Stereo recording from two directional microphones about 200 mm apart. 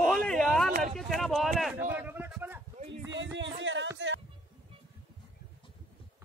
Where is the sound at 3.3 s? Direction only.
65° right (ahead or behind).